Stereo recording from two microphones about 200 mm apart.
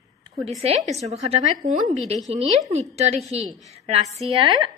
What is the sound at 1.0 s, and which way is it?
A woman's voice, 30° right (ahead or behind).